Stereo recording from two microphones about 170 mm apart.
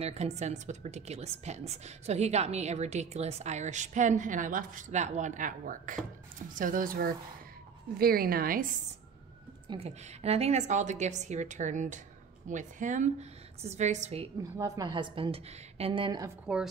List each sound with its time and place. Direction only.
0.0 s a woman's voice: 40° right (ahead or behind); by 8.6 s 60° right (ahead or behind)
9.7 s a woman's voice: 35° right (ahead or behind)
14.4 s a woman's voice: 25° right (ahead or behind)
16.5 s a woman's voice: 5° right (ahead or behind)